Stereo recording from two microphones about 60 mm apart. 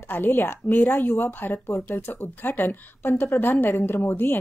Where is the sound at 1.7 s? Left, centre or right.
Left.